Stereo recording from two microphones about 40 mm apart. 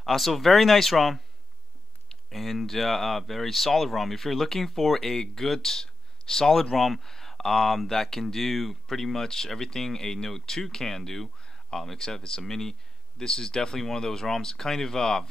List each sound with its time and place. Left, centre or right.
0.0 s speech: centre